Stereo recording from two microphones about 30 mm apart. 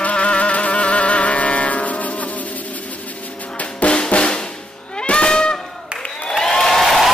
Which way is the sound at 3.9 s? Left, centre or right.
Left.